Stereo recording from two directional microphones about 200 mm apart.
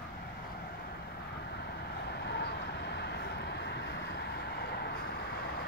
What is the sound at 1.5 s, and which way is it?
Vehicle, 55° left (ahead or behind).